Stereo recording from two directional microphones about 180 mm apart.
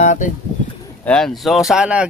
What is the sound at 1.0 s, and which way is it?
Speech, 5° left (ahead or behind).